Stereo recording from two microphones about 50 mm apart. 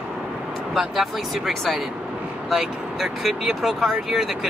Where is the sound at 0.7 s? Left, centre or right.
Centre.